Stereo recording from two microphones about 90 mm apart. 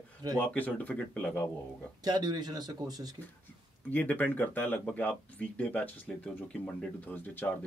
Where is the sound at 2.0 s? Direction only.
50° right (ahead or behind).